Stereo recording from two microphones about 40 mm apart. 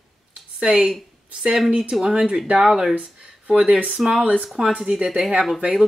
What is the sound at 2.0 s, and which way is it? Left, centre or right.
Speech, centre.